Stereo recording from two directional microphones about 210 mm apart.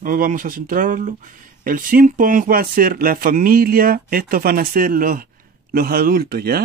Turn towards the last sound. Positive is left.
turn(degrees=-50)  # may be behind; listen again after turning